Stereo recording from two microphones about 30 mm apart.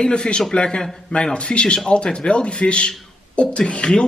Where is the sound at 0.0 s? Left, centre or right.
Left.